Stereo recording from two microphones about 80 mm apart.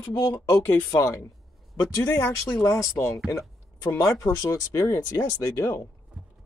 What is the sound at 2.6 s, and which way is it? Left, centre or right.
Speech, left.